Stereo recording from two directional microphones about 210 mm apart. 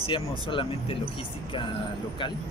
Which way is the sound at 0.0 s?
25° left (ahead or behind).